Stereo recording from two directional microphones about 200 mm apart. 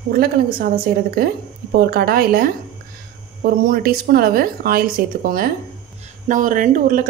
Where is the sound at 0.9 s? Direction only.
55° right (ahead or behind).